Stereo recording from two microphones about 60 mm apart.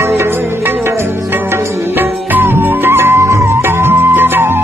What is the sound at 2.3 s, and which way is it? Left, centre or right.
Music, right.